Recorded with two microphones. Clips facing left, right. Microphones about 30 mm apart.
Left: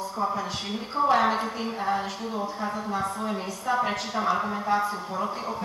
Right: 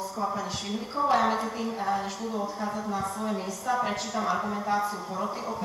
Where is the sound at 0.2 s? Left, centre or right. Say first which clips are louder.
Left 3 dB; centre.